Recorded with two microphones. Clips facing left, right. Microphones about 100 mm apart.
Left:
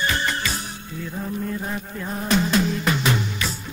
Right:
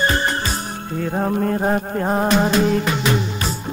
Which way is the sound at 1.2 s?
60° right (ahead or behind).